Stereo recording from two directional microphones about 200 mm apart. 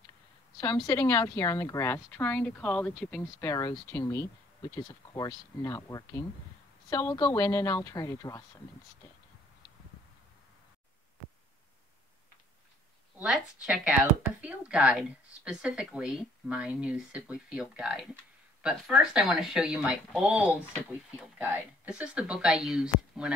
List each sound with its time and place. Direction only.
0.8 s a woman's voice: 15° left (ahead or behind)
13.2 s a woman's voice: 5° right (ahead or behind)